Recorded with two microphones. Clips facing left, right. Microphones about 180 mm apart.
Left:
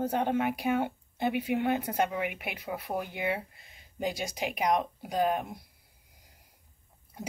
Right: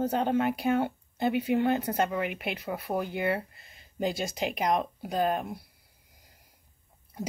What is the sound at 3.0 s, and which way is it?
A woman's voice, 15° left (ahead or behind).